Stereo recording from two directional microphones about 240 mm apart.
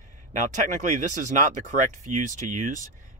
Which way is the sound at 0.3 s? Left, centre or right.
Right.